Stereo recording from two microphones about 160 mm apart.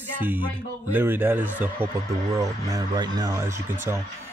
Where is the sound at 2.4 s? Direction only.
25° right (ahead or behind).